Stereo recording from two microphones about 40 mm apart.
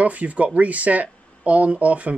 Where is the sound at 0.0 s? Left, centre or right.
Right.